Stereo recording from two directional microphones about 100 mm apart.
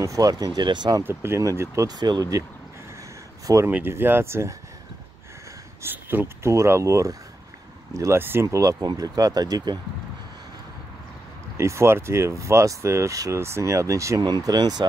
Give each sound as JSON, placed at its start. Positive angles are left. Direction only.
{"t": 0.0, "sound": "speech", "side_deg": -35}
{"t": 1.0, "sound": "speech", "side_deg": -25}
{"t": 2.0, "sound": "speech", "side_deg": -45}
{"t": 3.4, "sound": "speech", "side_deg": -30}
{"t": 5.8, "sound": "speech", "side_deg": -20}
{"t": 11.5, "sound": "speech", "side_deg": -30}
{"t": 14.2, "sound": "speech", "side_deg": -40}